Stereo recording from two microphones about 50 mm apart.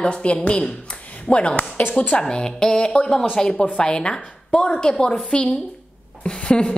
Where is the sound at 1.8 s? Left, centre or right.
Left.